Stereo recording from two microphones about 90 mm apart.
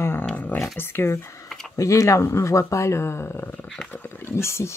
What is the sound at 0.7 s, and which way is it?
Speech, 25° left (ahead or behind).